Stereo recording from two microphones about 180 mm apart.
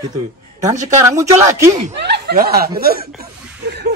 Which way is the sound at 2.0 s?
65° right (ahead or behind).